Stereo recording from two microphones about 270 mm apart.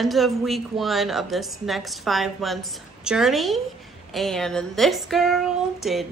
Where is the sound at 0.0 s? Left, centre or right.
Centre.